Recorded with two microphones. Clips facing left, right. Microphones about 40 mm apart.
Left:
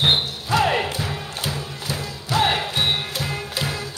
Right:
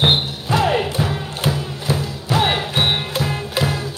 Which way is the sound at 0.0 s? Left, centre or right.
Right.